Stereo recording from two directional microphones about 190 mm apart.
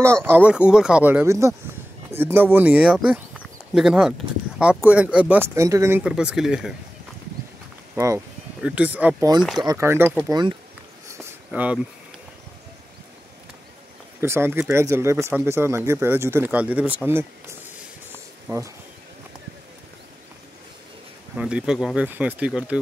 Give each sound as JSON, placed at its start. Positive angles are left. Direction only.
{"t": 0.0, "sound": "speech", "side_deg": -10}
{"t": 7.9, "sound": "speech", "side_deg": -15}
{"t": 11.1, "sound": "a sound", "side_deg": -10}
{"t": 14.2, "sound": "speech", "side_deg": -10}
{"t": 21.4, "sound": "speech", "side_deg": -5}